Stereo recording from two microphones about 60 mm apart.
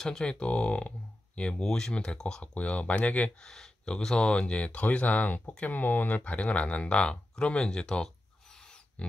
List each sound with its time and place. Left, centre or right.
0.0 s speech: centre
3.4 s speech: centre